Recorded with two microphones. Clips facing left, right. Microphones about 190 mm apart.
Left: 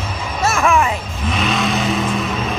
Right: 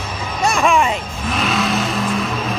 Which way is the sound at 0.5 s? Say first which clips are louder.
Even; 15° right (ahead or behind).